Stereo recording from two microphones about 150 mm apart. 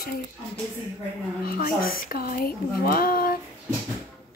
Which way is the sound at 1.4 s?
80° left.